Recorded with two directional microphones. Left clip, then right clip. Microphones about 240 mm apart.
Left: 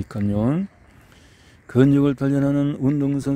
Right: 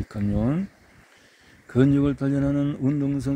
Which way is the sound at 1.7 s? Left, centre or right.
Left.